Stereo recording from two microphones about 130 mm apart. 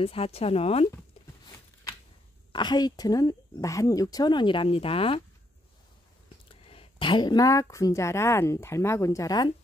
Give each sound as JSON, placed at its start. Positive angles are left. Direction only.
{"t": 0.0, "sound": "speech", "side_deg": 45}
{"t": 2.5, "sound": "a woman's voice", "side_deg": 35}
{"t": 6.2, "sound": "speech", "side_deg": 45}